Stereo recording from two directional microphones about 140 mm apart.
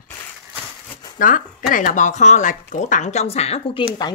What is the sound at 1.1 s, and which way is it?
Speech, 75° left (ahead or behind).